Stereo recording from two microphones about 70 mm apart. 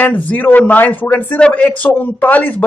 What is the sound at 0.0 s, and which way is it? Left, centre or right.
Speech, left.